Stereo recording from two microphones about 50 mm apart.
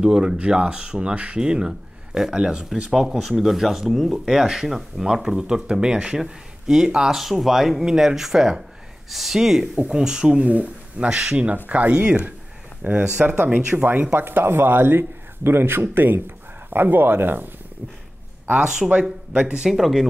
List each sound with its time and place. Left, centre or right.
0.0 s speech: centre
10.3 s speech: right
11.1 s speech: centre
11.3 s speech: right
13.7 s speech: right
14.1 s a man's voice: right
18.6 s speech: centre